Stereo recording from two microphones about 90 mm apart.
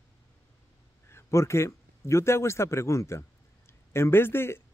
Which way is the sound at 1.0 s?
30° left (ahead or behind).